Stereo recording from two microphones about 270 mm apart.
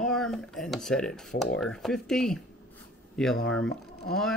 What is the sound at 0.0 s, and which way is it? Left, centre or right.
Speech, centre.